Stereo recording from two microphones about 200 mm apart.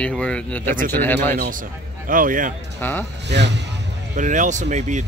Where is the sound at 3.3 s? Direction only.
60° right (ahead or behind).